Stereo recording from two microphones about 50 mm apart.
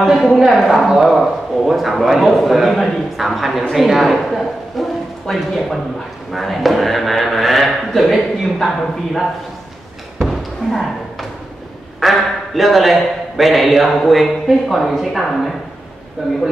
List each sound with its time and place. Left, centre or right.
0.3 s speech: centre
10.2 s a sound: centre
12.0 s speech: centre